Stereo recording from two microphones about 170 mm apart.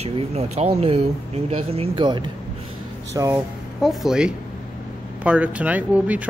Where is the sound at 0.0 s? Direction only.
40° right (ahead or behind); by 3.3 s 20° right (ahead or behind).